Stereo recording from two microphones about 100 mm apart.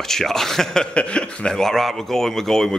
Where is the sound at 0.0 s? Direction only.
5° left (ahead or behind).